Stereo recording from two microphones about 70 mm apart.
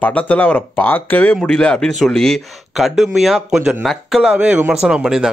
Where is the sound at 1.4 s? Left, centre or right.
Centre.